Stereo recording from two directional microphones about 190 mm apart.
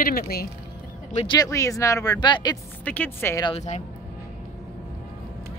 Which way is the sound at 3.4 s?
35° left (ahead or behind).